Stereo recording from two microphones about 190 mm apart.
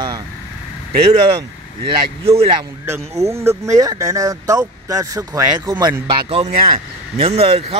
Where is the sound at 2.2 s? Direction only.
15° right (ahead or behind).